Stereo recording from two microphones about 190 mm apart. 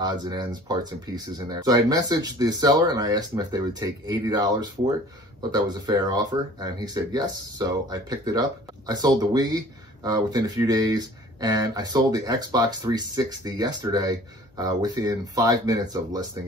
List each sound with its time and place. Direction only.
0.0 s speech: 20° right (ahead or behind)